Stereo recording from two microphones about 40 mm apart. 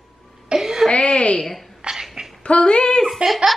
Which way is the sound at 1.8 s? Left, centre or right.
Centre.